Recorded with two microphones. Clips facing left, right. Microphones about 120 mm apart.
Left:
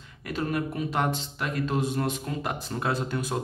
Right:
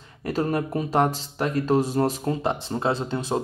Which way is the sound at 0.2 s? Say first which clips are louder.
Right 4 dB; 35° right (ahead or behind).